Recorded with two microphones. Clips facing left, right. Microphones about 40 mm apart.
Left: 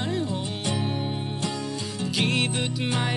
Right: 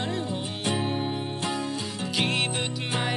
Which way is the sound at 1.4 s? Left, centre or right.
Right.